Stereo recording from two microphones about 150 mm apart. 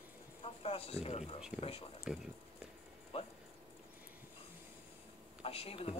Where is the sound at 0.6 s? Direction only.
40° left (ahead or behind).